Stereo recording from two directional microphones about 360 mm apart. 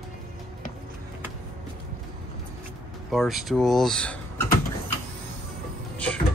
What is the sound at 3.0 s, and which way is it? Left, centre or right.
Speech, centre.